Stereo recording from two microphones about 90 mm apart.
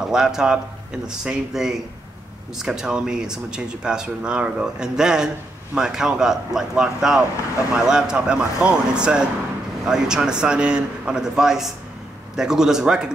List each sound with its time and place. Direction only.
0.0 s speech: 5° right (ahead or behind)